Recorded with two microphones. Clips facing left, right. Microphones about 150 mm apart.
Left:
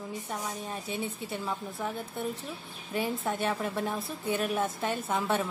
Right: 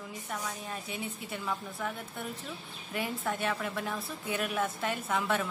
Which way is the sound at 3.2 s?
20° left (ahead or behind).